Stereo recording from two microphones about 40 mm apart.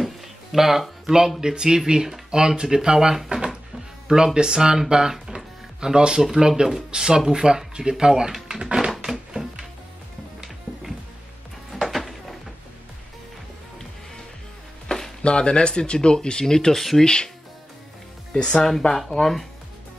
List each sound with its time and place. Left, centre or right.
0.0 s music: centre
1.4 s speech: centre
3.3 s drawer open or close: centre
4.1 s speech: centre
5.1 s music: centre
6.3 s speech: centre
8.9 s a sound: centre
9.3 s music: centre
11.7 s music: centre
14.9 s a sound: left
15.2 s speech: left; by 17.0 s centre
17.0 s speech: centre
18.3 s speech: left
18.7 s speech: centre